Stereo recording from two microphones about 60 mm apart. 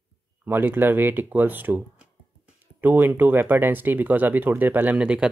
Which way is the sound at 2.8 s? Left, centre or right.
Right.